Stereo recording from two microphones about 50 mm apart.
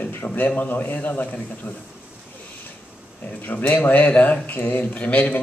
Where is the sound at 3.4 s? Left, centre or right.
Left.